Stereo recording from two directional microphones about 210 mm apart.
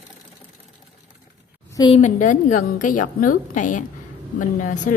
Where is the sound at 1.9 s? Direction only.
35° left (ahead or behind).